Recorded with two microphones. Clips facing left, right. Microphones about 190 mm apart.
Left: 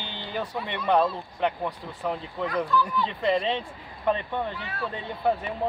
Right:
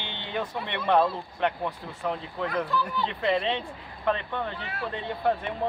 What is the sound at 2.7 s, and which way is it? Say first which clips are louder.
Speech: left 3 dB; 25° right (ahead or behind).